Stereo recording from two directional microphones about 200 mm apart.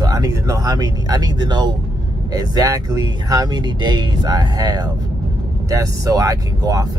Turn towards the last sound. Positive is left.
turn(degrees=-15)  # may be behind; listen again after turning